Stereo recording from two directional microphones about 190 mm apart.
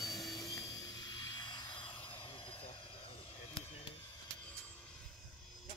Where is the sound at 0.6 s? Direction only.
20° left (ahead or behind).